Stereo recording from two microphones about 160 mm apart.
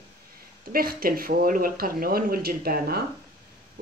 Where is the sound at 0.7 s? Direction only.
65° right (ahead or behind).